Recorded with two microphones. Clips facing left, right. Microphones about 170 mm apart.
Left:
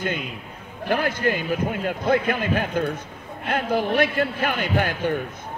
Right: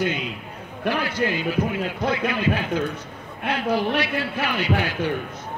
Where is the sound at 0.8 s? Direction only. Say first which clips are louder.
Left 1 dB; 50° left (ahead or behind).